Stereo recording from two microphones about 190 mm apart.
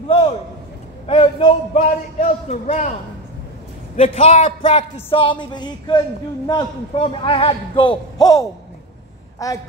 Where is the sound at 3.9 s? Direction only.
35° left (ahead or behind).